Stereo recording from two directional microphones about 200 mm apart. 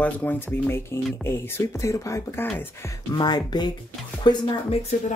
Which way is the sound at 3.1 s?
20° left (ahead or behind).